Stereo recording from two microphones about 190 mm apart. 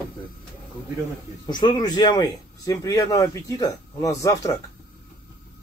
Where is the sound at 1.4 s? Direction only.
25° left (ahead or behind).